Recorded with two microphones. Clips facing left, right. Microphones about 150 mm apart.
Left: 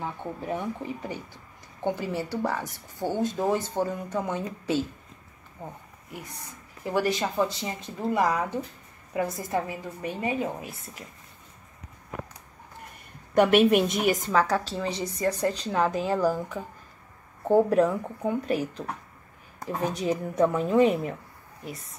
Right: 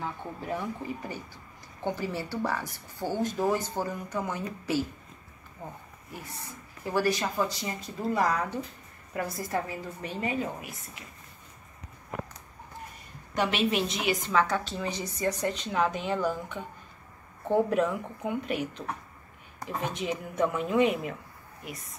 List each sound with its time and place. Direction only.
0.0 s speech: 20° left (ahead or behind)
6.8 s a woman's voice: 20° left (ahead or behind)
13.3 s a woman's voice: 55° left (ahead or behind); by 16.3 s 35° left (ahead or behind)
17.5 s a woman's voice: 35° left (ahead or behind)